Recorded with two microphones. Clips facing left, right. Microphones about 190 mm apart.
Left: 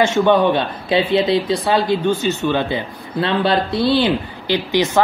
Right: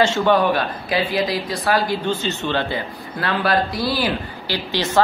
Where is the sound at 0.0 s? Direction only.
20° left (ahead or behind).